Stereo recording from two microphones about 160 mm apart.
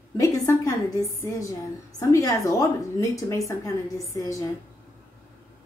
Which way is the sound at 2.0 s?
20° left (ahead or behind).